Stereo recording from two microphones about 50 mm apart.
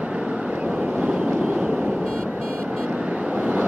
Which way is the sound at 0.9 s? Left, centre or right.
Centre.